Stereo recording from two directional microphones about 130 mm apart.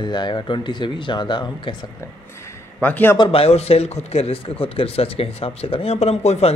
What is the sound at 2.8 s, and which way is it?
Speech, 15° left (ahead or behind).